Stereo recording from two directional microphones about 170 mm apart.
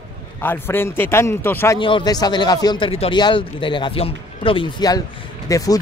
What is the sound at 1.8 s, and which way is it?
Speech, 25° left (ahead or behind).